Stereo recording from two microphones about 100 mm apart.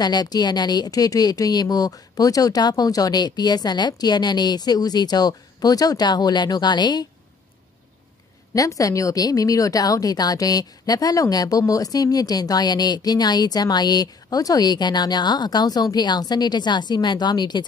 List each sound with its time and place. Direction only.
0.0 s a woman's voice: 40° left (ahead or behind)
8.5 s speech: 35° left (ahead or behind)